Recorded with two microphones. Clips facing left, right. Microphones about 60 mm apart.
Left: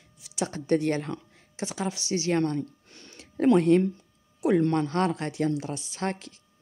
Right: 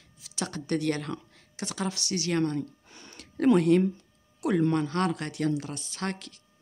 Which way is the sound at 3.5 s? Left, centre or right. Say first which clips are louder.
Left 1 dB; left.